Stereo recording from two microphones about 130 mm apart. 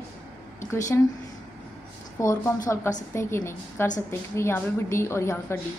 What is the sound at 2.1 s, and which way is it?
A woman's voice, 20° left (ahead or behind).